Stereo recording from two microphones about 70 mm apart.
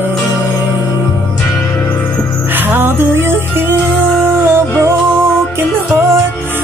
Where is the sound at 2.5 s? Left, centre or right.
Right.